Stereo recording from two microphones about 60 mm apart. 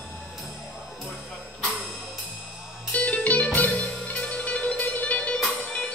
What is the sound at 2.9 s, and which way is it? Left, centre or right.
Music, left.